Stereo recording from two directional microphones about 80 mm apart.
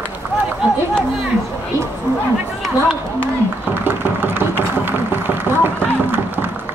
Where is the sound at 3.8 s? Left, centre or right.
Right.